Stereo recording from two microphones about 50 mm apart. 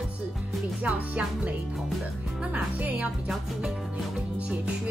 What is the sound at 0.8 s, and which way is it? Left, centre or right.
Speech, right.